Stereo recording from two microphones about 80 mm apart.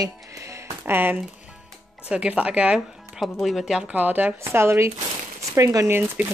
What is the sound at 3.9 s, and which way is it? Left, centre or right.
A woman's voice, right.